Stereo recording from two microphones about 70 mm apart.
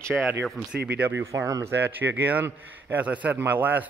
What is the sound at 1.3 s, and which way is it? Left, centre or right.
Speech, right.